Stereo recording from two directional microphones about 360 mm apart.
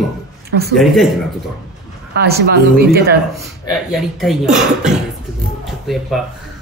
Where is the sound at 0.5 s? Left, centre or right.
Right.